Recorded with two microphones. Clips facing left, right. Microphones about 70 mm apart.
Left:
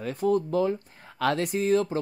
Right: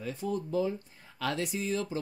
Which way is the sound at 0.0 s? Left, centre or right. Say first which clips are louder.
Left 9 dB; left.